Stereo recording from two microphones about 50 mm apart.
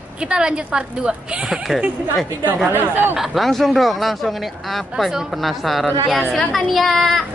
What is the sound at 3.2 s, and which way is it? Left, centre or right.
Speech, centre.